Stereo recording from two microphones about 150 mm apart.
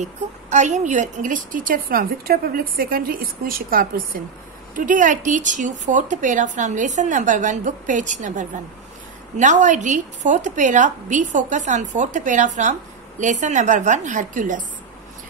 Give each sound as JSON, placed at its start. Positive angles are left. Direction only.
{"t": 0.0, "sound": "a woman's voice", "side_deg": -50}
{"t": 4.7, "sound": "a woman's voice", "side_deg": -60}